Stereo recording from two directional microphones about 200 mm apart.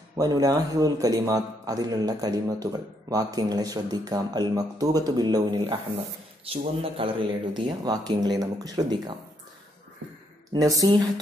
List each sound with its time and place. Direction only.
0.1 s a man's voice: 20° right (ahead or behind)
10.5 s speech: 15° right (ahead or behind)